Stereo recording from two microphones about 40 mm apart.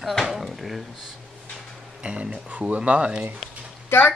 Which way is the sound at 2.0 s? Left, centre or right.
Right.